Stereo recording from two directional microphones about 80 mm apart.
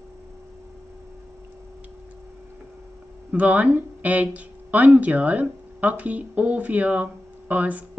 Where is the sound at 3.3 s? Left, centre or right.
Centre.